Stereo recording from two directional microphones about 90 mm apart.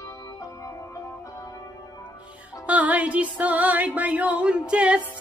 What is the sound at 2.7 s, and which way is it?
Music, 15° right (ahead or behind).